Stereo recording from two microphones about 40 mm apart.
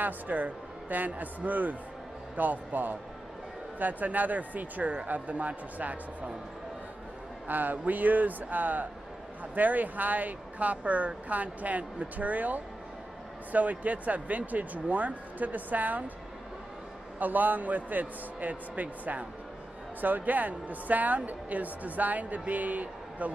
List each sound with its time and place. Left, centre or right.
0.0 s speech: right
7.4 s speech: right
17.2 s speech: right